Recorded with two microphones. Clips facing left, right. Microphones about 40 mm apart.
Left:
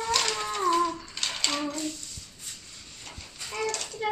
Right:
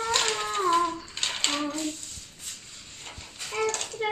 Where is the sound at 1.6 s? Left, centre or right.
Right.